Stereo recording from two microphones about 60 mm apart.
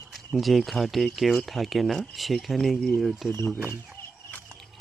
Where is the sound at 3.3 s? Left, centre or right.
Left.